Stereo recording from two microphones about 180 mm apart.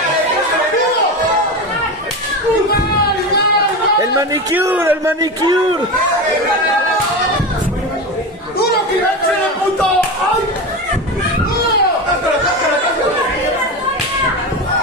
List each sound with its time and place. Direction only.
4.0 s a man's voice: 20° right (ahead or behind)